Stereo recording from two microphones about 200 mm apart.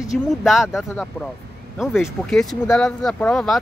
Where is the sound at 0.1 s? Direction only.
Centre (ahead or behind).